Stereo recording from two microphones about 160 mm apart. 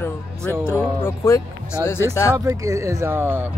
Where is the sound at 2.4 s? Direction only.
20° right (ahead or behind).